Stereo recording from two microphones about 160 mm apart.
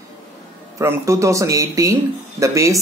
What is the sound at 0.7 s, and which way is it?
Speech, 20° right (ahead or behind).